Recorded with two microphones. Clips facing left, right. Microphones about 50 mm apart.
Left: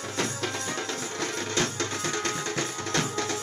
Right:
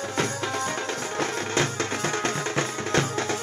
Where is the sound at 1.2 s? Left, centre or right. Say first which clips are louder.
Right 3 dB; right.